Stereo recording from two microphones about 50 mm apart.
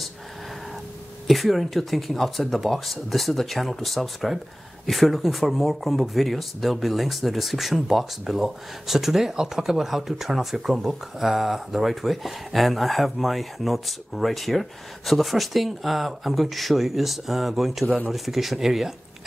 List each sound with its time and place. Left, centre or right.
1.2 s speech: centre